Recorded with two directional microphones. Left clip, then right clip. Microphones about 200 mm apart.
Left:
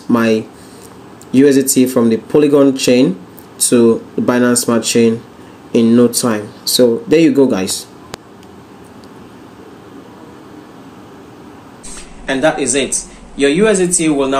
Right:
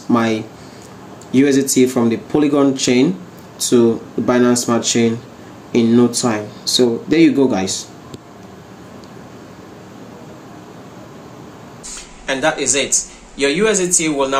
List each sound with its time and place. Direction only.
0.1 s speech: 15° left (ahead or behind)
12.3 s a man's voice: 5° right (ahead or behind)